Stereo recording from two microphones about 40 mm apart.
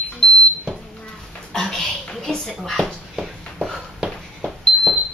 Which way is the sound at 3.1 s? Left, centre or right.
Centre.